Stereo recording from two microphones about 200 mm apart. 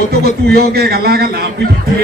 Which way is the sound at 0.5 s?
50° right (ahead or behind).